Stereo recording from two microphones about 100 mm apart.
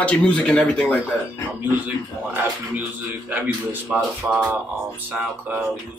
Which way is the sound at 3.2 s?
15° right (ahead or behind).